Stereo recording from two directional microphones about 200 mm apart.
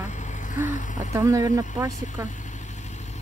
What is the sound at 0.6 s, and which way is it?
Speech, 40° left (ahead or behind).